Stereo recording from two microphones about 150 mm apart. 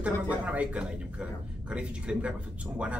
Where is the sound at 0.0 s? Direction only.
10° right (ahead or behind).